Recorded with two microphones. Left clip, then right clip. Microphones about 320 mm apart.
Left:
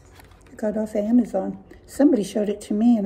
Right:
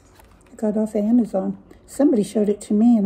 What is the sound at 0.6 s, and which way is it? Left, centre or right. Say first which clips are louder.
Speech: right 2 dB; centre.